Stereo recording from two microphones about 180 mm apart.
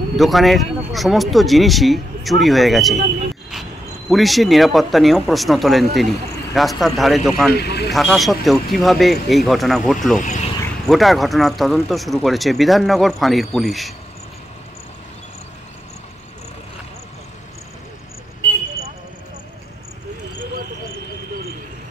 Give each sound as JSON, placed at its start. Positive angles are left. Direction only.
{"t": 0.1, "sound": "speech", "side_deg": 0}
{"t": 4.1, "sound": "speech", "side_deg": 0}
{"t": 7.5, "sound": "speech", "side_deg": 65}
{"t": 7.9, "sound": "speech", "side_deg": 0}
{"t": 10.2, "sound": "vehicle", "side_deg": 40}
{"t": 10.9, "sound": "speech", "side_deg": 0}